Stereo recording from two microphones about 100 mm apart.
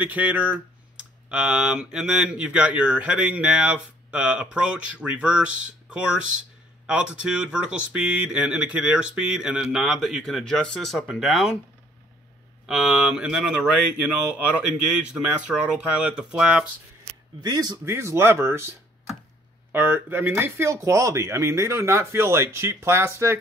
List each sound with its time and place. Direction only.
0.0 s speech: 15° right (ahead or behind)
12.6 s speech: 5° right (ahead or behind)
17.4 s speech: 40° right (ahead or behind)
17.8 s speech: 25° right (ahead or behind)
19.7 s speech: 20° right (ahead or behind)